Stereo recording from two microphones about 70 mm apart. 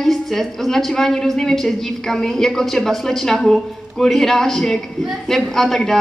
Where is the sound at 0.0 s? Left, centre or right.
Centre.